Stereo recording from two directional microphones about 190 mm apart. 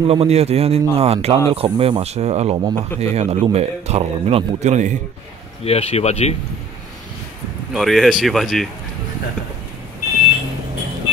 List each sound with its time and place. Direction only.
0.0 s speech: 30° right (ahead or behind)
5.6 s speech: 30° left (ahead or behind)
7.7 s speech: centre (ahead or behind)